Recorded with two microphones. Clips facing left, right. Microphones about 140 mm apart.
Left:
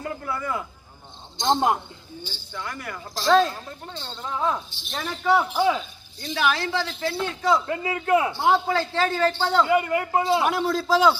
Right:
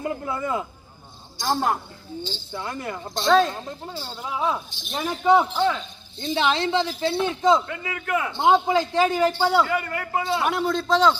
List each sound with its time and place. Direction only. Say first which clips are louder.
0.0 s a man's voice: right 3 dB; 20° right (ahead or behind)
1.4 s a man's voice: left 2 dB; 20° left (ahead or behind)
2.5 s a man's voice: right 3 dB; 20° right (ahead or behind)
3.2 s a man's voice: even; centre (ahead or behind)
3.5 s a man's voice: right 4 dB; 20° right (ahead or behind)
3.9 s a man's voice: left 1 dB; 10° right (ahead or behind)
5.5 s a man's voice: left 1 dB; 5° left (ahead or behind)
6.1 s a man's voice: right 2 dB; 25° right (ahead or behind)
7.6 s a man's voice: left 5 dB; 30° left (ahead or behind)
8.3 s a man's voice: right 2 dB; 20° right (ahead or behind)
9.7 s a man's voice: left 5 dB; 20° left (ahead or behind)
10.4 s a man's voice: even; centre (ahead or behind)